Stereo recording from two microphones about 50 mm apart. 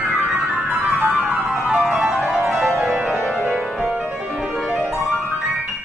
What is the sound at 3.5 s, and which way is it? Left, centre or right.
Music, right.